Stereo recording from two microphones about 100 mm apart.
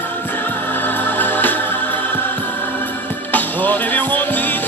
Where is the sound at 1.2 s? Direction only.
20° left (ahead or behind).